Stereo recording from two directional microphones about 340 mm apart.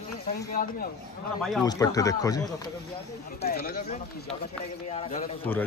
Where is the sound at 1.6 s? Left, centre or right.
Centre.